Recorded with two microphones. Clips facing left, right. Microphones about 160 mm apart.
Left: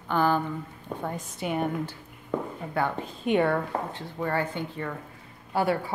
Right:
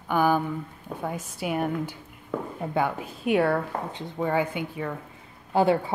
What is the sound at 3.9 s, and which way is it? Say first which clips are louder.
A woman's voice: right 3 dB; 15° right (ahead or behind).